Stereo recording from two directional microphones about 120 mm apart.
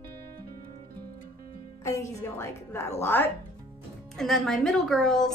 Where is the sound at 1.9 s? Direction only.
25° left (ahead or behind).